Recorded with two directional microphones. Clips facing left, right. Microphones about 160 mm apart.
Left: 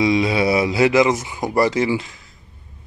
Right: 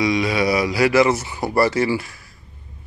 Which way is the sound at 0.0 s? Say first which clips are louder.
Left 2 dB; 25° left (ahead or behind).